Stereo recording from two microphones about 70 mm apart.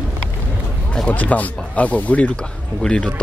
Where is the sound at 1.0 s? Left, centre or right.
Left.